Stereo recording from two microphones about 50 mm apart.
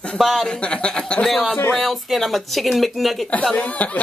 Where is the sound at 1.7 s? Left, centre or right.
Centre.